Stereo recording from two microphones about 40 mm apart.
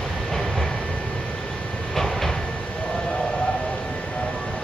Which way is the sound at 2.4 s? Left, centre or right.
Left.